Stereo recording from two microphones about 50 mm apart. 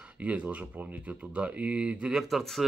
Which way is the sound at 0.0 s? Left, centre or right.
Right.